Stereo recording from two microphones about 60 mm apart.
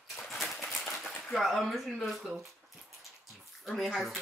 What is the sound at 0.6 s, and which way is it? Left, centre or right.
Typewriter, centre.